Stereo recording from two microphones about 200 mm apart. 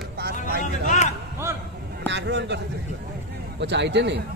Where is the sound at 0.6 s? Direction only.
40° left (ahead or behind).